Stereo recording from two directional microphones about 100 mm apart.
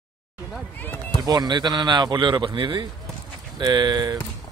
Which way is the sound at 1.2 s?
40° right (ahead or behind).